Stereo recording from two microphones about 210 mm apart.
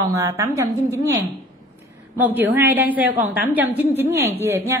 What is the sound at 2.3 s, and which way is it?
A woman's voice, 10° right (ahead or behind).